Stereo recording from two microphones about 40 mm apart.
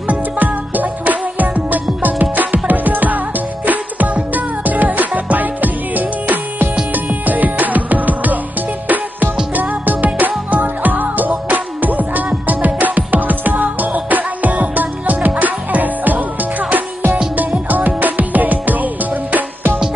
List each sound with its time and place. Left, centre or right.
0.0 s music: right